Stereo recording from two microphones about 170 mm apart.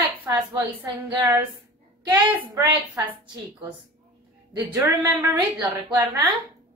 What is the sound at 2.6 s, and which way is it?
Speech, 20° right (ahead or behind).